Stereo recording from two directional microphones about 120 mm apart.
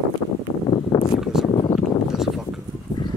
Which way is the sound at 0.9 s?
35° left (ahead or behind).